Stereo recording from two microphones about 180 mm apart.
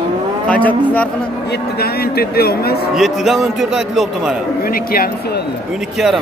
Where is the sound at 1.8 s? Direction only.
60° left (ahead or behind).